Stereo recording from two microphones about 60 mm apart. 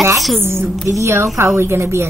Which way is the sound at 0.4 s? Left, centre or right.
Right.